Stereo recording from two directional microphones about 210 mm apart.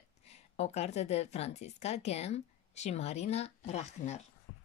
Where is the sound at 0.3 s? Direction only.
30° left (ahead or behind).